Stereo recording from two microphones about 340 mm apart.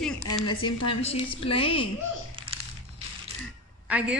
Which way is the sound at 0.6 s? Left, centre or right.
Centre.